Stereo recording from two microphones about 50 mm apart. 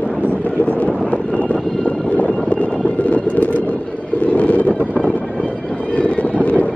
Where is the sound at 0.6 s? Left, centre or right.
Left.